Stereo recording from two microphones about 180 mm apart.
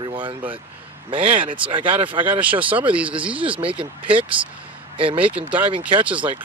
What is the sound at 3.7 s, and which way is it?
Speech, 10° right (ahead or behind).